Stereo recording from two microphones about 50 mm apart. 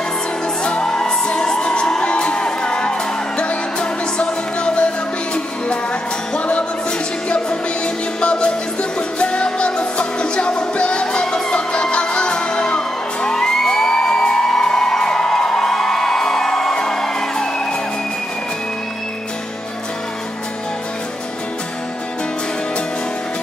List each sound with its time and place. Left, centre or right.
0.7 s music: centre